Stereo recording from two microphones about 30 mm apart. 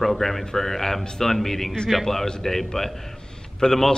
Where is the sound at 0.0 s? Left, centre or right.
Centre.